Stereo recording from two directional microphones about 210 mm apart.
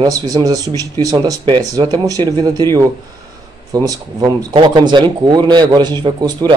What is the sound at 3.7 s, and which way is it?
Speech, 15° right (ahead or behind).